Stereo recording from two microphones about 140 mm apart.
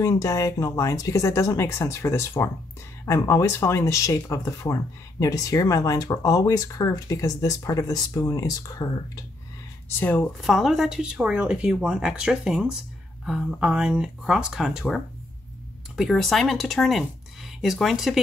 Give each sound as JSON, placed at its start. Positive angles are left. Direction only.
{"t": 0.0, "sound": "speech", "side_deg": 25}
{"t": 9.8, "sound": "speech", "side_deg": 15}
{"t": 10.4, "sound": "speech", "side_deg": 0}
{"t": 16.0, "sound": "speech", "side_deg": 0}